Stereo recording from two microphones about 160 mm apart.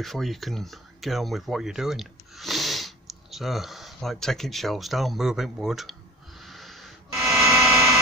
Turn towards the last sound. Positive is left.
turn(degrees=-5)  # may be behind; listen again after turning